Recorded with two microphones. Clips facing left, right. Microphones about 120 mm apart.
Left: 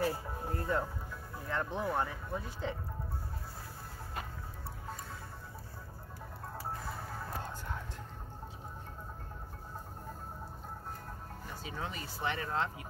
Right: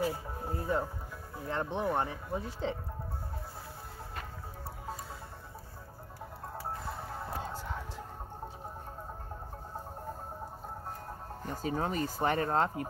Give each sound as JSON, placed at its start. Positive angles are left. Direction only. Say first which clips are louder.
{"t": 0.5, "sound": "speech", "louder": "right 2 dB", "side_deg": -15}
{"t": 1.5, "sound": "speech", "louder": "right 3 dB", "side_deg": -25}
{"t": 6.8, "sound": "music", "louder": "right 2 dB", "side_deg": 0}
{"t": 11.4, "sound": "speech", "louder": "right 9 dB", "side_deg": -45}